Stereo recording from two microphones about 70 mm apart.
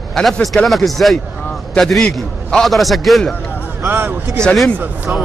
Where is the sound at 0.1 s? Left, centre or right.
Centre.